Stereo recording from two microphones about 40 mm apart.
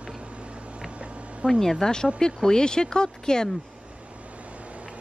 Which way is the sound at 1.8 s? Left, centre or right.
Centre.